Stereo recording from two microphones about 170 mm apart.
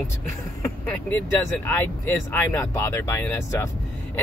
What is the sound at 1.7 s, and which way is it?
Speech, 10° left (ahead or behind).